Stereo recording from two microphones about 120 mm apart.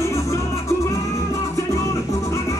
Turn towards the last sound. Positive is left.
turn(degrees=25)  # may be behind; listen again after turning